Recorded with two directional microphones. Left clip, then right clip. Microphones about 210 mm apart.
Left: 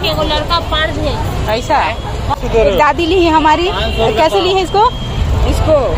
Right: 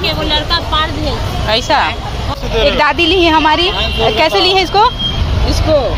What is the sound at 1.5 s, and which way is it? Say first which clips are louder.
Speech: right 1 dB; 5° left (ahead or behind).